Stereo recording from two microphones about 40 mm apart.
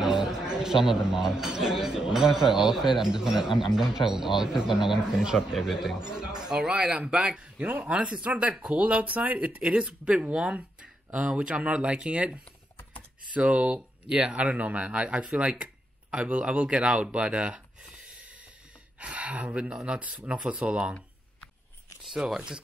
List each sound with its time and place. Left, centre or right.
0.0 s speech: centre; by 8.3 s right
8.3 s speech: right
15.3 s a sound: right
16.3 s speech: right
18.9 s speech: right
19.7 s speech: right
22.3 s speech: centre